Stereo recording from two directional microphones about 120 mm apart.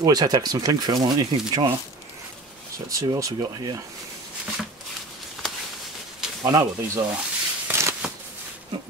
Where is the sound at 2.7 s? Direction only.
30° right (ahead or behind).